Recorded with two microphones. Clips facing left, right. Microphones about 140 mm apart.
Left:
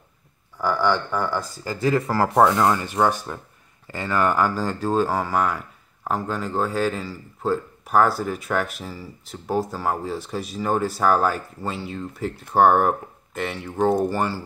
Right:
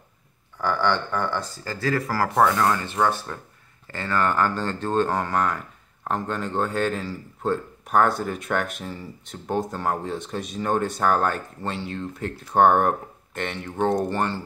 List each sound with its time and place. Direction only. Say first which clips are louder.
0.6 s speech: left 2 dB; 10° left (ahead or behind)